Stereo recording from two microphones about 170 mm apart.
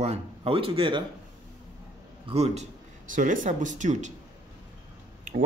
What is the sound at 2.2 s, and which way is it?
A man's voice, 40° right (ahead or behind).